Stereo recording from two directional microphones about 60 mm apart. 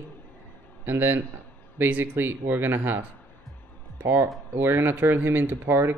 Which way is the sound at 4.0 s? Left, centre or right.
Right.